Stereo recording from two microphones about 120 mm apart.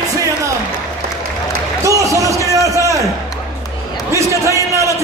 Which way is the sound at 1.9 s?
25° right (ahead or behind).